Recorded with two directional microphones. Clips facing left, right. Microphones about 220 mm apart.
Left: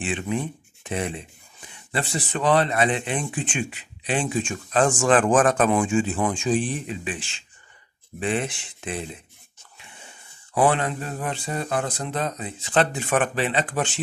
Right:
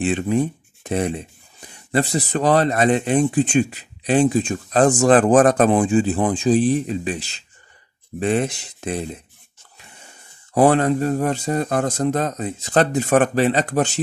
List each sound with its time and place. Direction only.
0.0 s speech: 40° right (ahead or behind)
10.5 s speech: 40° right (ahead or behind)